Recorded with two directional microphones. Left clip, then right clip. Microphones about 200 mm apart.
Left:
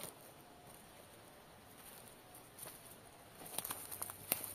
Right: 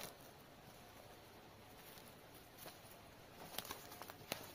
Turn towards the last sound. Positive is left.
turn(degrees=30)  # may be behind; listen again after turning